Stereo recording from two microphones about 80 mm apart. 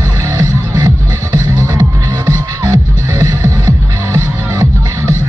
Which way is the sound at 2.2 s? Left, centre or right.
Right.